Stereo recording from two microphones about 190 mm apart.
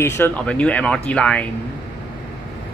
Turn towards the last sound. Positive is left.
turn(degrees=5)  # may be behind; listen again after turning